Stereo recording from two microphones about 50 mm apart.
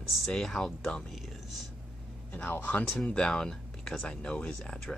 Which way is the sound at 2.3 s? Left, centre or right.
Left.